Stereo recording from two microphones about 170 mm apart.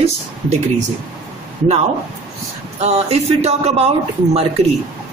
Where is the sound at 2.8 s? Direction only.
40° right (ahead or behind).